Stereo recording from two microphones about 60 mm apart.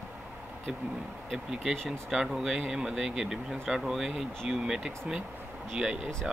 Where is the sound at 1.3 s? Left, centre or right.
Centre.